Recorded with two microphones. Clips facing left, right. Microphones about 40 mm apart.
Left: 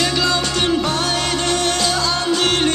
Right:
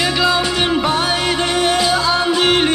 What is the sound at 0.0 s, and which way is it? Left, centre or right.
Music, centre.